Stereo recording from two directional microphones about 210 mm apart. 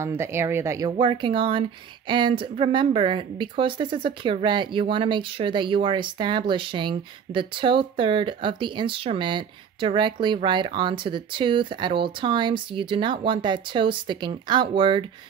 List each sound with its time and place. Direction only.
0.0 s speech: 10° right (ahead or behind)